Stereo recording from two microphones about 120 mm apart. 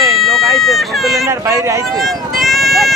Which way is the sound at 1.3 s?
25° right (ahead or behind).